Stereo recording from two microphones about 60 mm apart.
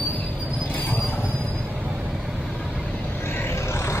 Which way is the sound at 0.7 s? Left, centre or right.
Left.